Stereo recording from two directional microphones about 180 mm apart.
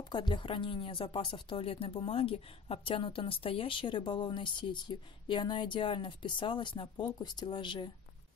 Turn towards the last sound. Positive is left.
turn(degrees=25)  # may be behind; listen again after turning